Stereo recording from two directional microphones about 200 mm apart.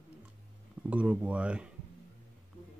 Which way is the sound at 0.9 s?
5° right (ahead or behind).